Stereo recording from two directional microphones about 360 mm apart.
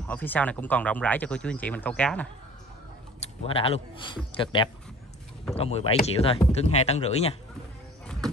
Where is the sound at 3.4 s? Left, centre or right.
Centre.